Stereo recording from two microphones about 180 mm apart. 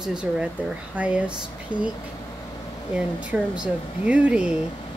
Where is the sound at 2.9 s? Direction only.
5° right (ahead or behind).